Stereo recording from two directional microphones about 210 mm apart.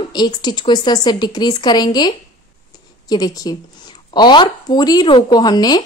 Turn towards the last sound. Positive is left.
turn(degrees=20)  # may be behind; listen again after turning